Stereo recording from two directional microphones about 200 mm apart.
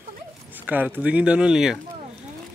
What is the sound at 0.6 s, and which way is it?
Speech, 10° right (ahead or behind).